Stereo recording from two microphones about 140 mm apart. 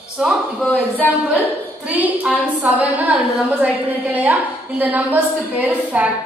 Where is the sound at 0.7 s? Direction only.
10° left (ahead or behind).